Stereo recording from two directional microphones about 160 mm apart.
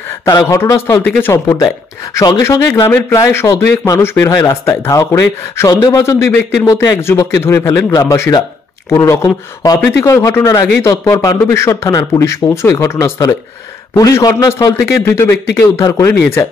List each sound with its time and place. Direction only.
0.2 s speech: 20° left (ahead or behind)